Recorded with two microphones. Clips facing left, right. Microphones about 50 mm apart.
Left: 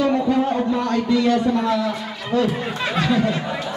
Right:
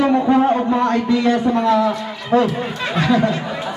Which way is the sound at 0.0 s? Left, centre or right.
Right.